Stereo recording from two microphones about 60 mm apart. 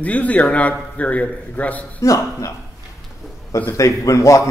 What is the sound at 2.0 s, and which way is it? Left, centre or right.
Speech, left.